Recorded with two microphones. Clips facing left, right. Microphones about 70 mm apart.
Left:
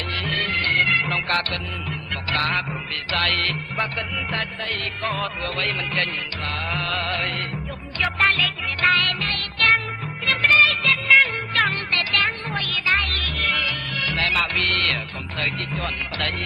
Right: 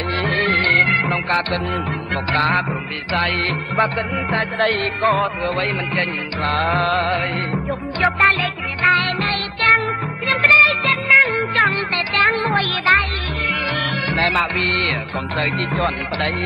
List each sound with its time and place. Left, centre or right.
0.2 s music: right
2.3 s speech: right
3.1 s music: right
3.7 s speech: right
6.4 s music: right
6.9 s speech: right
8.0 s music: right
10.2 s music of bollywood: right
12.4 s music: right
14.0 s speech: right